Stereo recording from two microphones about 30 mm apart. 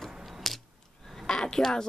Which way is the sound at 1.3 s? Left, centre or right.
Left.